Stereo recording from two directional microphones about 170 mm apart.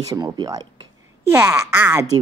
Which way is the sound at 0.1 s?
25° right (ahead or behind).